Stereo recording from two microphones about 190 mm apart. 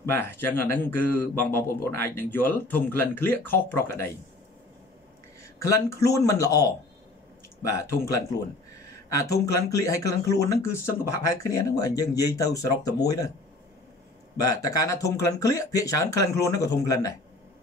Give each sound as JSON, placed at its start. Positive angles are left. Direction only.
{"t": 0.1, "sound": "speech", "side_deg": 10}
{"t": 5.4, "sound": "speech", "side_deg": 15}
{"t": 7.7, "sound": "speech", "side_deg": 15}
{"t": 14.4, "sound": "speech", "side_deg": 20}